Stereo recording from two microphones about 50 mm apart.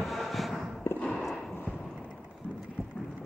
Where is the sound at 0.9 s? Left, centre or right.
Left.